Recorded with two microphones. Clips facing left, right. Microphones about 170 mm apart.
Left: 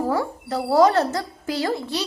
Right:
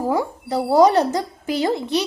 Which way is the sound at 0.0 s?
15° right (ahead or behind).